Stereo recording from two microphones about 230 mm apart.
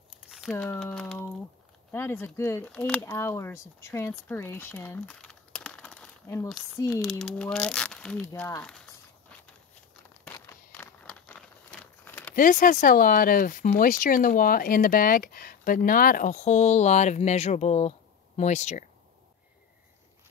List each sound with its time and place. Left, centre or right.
0.1 s crumpling: centre
1.9 s speech: centre
4.1 s crumpling: centre
6.9 s speech: centre
10.2 s a sound: centre
12.4 s speech: left